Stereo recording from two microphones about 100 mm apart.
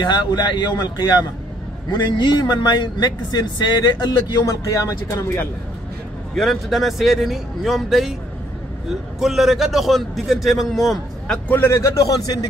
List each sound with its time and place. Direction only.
0.0 s a man's voice: 45° left (ahead or behind)
6.3 s a man's voice: centre (ahead or behind)
9.2 s a man's voice: 5° right (ahead or behind)
11.4 s a man's voice: 20° left (ahead or behind)